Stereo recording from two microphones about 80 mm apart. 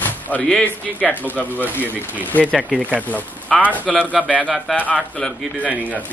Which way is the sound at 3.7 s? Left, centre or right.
Centre.